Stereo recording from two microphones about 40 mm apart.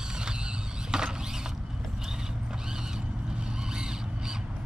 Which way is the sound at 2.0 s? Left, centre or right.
Centre.